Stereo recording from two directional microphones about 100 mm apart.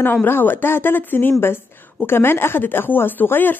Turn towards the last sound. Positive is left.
turn(degrees=20)  # may be behind; listen again after turning